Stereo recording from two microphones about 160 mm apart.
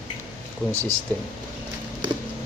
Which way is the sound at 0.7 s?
15° right (ahead or behind).